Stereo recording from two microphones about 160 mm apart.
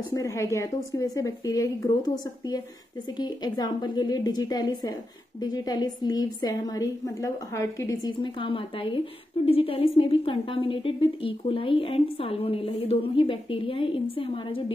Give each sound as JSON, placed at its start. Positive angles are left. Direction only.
{"t": 0.1, "sound": "a woman's voice", "side_deg": 20}